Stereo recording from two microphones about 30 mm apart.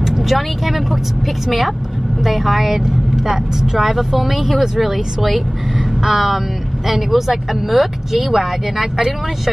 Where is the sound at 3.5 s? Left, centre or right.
Centre.